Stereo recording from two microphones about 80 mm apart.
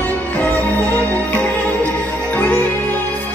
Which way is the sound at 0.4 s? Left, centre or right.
Centre.